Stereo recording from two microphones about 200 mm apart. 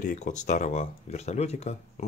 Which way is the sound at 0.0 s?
35° left (ahead or behind).